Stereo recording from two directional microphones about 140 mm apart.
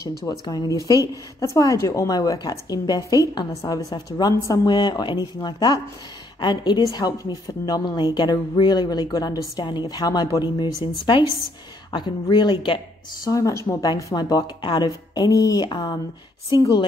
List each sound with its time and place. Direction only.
0.2 s a woman's voice: 30° left (ahead or behind)